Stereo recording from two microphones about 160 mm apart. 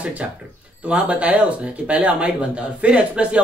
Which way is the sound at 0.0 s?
10° right (ahead or behind).